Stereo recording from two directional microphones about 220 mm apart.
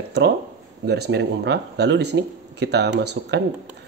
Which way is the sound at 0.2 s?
50° right (ahead or behind).